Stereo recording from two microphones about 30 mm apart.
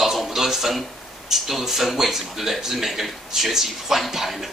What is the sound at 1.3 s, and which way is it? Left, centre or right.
A man's voice, centre.